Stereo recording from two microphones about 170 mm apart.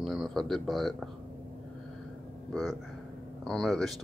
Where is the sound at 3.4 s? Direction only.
5° left (ahead or behind).